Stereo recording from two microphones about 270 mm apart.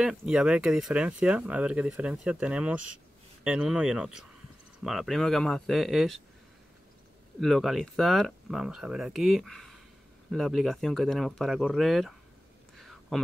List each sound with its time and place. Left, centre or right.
0.0 s speech: centre
7.3 s speech: centre
12.7 s a sound: centre